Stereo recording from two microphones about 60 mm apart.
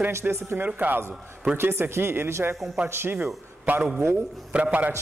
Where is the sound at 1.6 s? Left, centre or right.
Right.